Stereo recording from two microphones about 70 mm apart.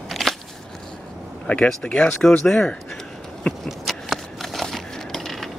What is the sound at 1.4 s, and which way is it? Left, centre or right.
Speech, centre.